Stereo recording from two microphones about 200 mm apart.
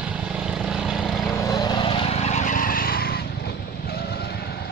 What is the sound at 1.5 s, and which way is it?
Vehicle, 20° left (ahead or behind).